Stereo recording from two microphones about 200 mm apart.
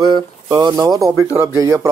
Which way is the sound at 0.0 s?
25° right (ahead or behind).